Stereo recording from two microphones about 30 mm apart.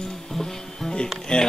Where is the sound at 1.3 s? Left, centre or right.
Left.